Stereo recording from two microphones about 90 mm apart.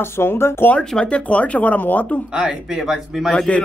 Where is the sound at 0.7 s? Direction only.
15° left (ahead or behind).